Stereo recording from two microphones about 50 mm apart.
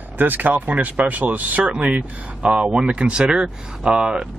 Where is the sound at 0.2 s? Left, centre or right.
Right.